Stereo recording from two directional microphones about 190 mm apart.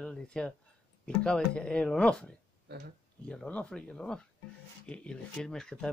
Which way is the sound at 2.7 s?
60° right (ahead or behind).